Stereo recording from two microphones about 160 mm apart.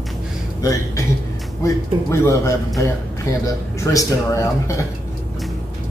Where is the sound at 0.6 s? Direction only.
20° left (ahead or behind).